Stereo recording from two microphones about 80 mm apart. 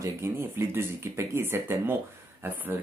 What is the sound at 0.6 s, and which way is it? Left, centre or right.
Speech, right.